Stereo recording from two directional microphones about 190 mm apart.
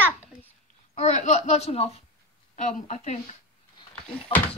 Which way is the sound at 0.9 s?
40° left (ahead or behind).